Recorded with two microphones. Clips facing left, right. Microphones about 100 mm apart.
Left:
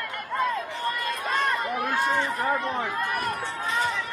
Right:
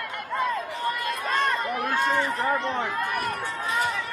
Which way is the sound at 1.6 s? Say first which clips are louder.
Even; 15° left (ahead or behind).